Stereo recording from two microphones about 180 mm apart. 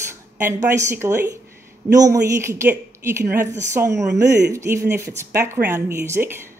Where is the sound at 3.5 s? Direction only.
40° right (ahead or behind).